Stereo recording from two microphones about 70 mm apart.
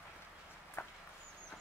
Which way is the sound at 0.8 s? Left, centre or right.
Left.